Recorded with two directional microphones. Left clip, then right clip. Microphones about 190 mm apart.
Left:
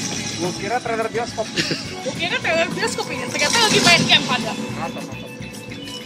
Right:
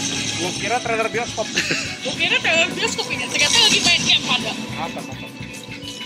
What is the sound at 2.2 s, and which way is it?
Speech, 20° right (ahead or behind).